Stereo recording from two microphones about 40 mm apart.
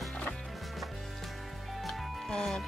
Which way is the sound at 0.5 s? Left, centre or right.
Centre.